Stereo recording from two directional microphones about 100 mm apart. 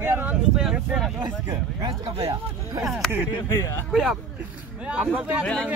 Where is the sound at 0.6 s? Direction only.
5° right (ahead or behind).